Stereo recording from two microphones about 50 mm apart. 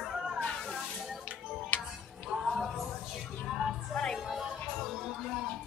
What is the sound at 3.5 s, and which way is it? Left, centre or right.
Music, centre.